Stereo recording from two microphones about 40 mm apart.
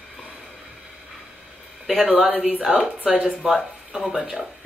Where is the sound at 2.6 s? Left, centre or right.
Centre.